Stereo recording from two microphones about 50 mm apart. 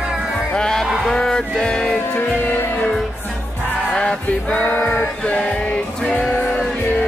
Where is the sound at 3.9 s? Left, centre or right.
Centre.